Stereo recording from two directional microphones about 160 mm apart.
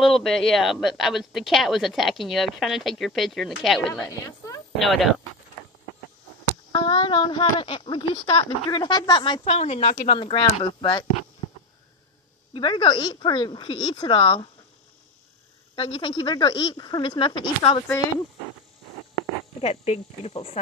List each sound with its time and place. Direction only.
0.0 s speech: centre (ahead or behind)
6.7 s speech: 30° left (ahead or behind)
9.5 s speech: 40° left (ahead or behind)
12.5 s speech: 30° left (ahead or behind)
15.7 s speech: 30° left (ahead or behind)
19.6 s speech: 40° left (ahead or behind)